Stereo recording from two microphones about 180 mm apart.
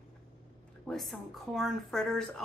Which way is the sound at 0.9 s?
Centre (ahead or behind).